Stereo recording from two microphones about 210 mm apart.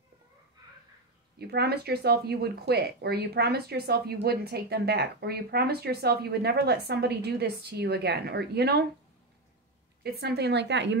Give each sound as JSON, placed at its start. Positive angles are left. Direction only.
{"t": 1.4, "sound": "speech", "side_deg": -50}
{"t": 10.0, "sound": "speech", "side_deg": -50}